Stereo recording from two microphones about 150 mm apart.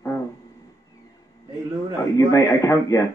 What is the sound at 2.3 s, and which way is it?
Speech, 25° left (ahead or behind).